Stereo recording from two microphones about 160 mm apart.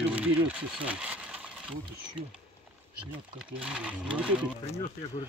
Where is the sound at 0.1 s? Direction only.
10° right (ahead or behind).